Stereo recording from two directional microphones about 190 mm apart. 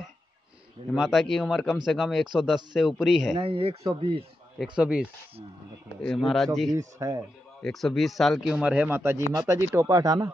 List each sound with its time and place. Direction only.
0.9 s speech: centre (ahead or behind)
3.3 s speech: 30° right (ahead or behind)
4.7 s speech: 5° right (ahead or behind)
6.7 s speech: 15° right (ahead or behind)
7.6 s speech: centre (ahead or behind); by 10.3 s 20° right (ahead or behind)